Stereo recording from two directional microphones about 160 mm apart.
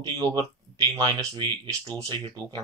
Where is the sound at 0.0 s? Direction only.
25° right (ahead or behind).